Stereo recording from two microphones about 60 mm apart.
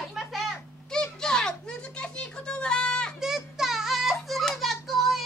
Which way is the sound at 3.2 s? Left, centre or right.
Centre.